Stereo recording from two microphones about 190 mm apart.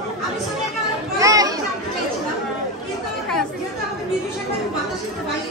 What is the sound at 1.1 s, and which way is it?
Children playing, 20° right (ahead or behind).